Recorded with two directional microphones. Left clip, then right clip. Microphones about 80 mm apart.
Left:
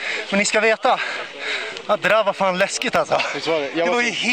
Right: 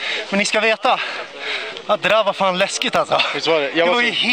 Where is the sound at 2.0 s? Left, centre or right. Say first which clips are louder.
Right 1 dB; centre.